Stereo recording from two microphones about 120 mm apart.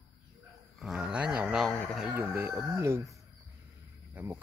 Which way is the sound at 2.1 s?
20° right (ahead or behind).